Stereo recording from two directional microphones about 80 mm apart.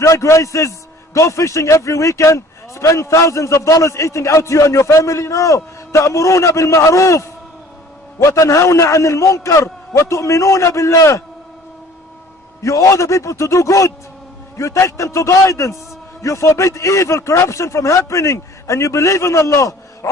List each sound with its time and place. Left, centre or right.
0.0 s a man's voice: left
12.6 s a man's voice: left